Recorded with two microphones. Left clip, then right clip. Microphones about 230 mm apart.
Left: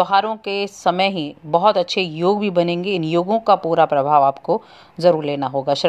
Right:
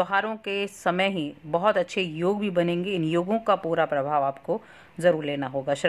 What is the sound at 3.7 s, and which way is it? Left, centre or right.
Speech, centre.